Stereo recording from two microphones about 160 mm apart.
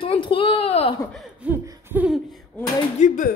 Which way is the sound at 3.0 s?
50° left (ahead or behind).